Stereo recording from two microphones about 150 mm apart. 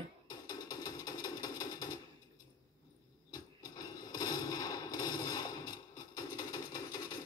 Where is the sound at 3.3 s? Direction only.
25° left (ahead or behind).